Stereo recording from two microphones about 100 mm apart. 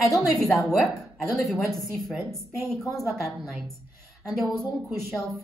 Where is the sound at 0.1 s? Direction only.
35° left (ahead or behind).